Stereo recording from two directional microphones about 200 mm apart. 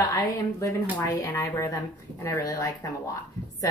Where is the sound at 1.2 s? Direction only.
15° left (ahead or behind).